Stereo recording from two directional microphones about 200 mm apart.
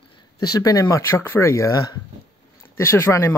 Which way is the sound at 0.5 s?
20° left (ahead or behind).